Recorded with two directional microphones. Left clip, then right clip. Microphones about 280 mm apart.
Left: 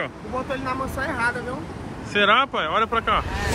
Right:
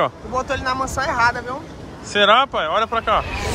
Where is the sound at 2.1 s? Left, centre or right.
Centre.